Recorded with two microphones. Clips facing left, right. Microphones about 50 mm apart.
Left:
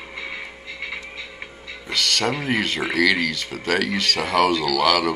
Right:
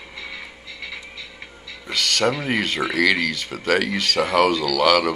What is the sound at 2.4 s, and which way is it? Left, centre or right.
Speech, centre.